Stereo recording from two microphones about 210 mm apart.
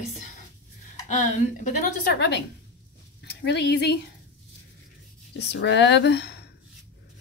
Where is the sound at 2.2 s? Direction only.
55° left (ahead or behind).